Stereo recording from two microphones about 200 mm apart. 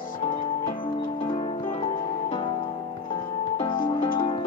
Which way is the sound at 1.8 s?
25° left (ahead or behind).